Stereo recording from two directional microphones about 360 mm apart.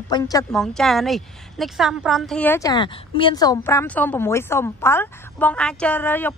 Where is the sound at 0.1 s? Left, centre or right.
Centre.